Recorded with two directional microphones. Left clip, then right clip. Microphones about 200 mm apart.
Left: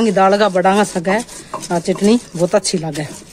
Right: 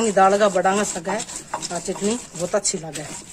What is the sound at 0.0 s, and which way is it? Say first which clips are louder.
Speech: left 4 dB; 45° left (ahead or behind).